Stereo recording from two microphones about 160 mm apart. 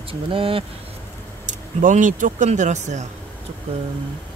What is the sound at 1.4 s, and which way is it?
Speech, 50° right (ahead or behind).